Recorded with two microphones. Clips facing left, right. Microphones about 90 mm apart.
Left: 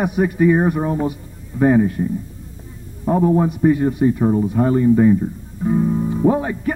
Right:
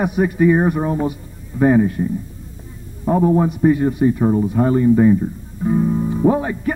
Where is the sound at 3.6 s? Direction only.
10° right (ahead or behind).